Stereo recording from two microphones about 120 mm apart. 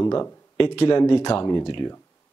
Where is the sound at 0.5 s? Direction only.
50° left (ahead or behind).